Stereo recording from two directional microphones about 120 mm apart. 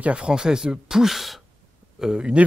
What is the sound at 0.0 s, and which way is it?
A man's voice, 10° right (ahead or behind).